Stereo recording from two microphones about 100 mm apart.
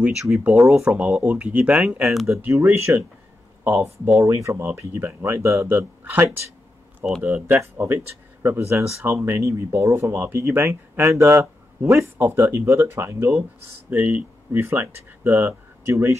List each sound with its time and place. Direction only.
0.0 s speech: 5° right (ahead or behind)
2.4 s speech: 25° right (ahead or behind)